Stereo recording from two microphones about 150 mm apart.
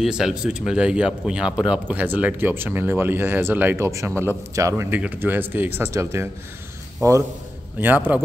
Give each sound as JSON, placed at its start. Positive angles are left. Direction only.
{"t": 0.0, "sound": "a man's voice", "side_deg": -5}